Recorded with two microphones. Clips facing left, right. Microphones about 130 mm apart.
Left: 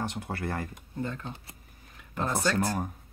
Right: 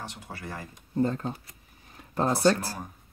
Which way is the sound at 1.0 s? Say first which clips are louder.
Right 6 dB; 35° right (ahead or behind).